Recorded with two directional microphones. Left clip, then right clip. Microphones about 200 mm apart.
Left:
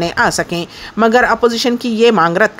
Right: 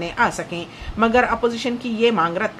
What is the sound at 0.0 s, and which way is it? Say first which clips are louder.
Speech: left 6 dB; 50° left (ahead or behind).